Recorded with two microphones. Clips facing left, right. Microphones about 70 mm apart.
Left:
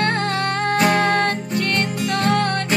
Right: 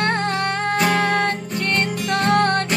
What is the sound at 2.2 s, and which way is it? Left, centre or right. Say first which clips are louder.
Music: right 3 dB; right.